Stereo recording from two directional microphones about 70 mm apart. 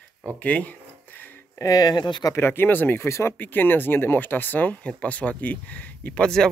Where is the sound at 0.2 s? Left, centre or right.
Left.